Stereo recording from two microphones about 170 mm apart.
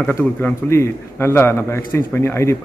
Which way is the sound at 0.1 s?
10° left (ahead or behind).